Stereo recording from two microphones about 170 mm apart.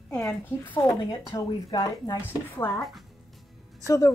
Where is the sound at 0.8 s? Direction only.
20° left (ahead or behind).